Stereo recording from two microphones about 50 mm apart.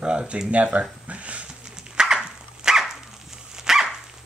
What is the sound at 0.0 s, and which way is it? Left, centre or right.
Speech, right.